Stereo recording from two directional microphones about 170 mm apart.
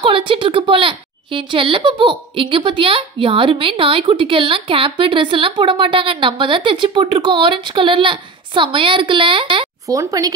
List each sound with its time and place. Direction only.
0.0 s a woman's voice: 30° right (ahead or behind)
9.8 s a woman's voice: 20° right (ahead or behind)